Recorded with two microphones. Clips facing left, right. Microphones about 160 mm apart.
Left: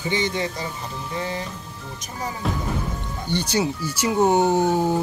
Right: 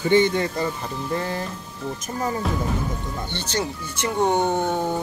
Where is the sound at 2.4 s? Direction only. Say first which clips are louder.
Right 1 dB; centre (ahead or behind).